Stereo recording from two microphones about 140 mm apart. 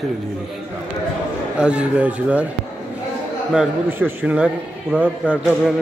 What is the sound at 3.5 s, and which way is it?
A man's voice, 10° right (ahead or behind).